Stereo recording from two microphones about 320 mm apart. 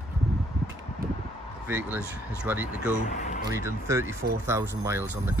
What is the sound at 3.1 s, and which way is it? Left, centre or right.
Speech, left.